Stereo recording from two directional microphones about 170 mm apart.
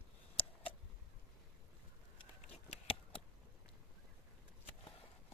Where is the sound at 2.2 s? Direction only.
35° left (ahead or behind).